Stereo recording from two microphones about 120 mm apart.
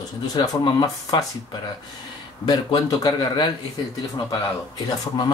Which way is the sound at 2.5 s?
35° left (ahead or behind).